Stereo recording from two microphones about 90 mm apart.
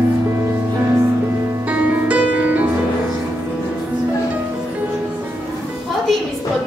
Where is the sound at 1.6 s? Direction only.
15° right (ahead or behind).